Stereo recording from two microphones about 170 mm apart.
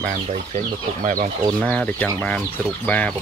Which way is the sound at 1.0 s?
50° right (ahead or behind).